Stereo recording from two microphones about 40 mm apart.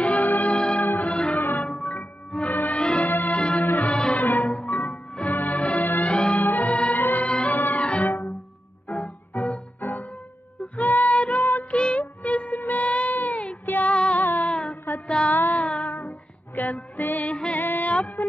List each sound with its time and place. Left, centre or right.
0.0 s music: left
0.8 s music: left
6.0 s music: left
6.4 s music: left
7.2 s music: left
7.5 s music: left
11.7 s music: left
12.0 s music: left
13.9 s music: left
14.2 s a sound: left
14.5 s mantra: left
15.3 s music: left